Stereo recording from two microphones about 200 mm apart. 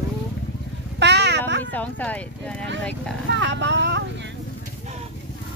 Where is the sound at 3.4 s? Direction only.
65° right (ahead or behind).